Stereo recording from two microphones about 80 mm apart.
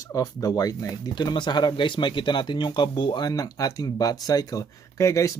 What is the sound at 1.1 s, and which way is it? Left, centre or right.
Speech, left.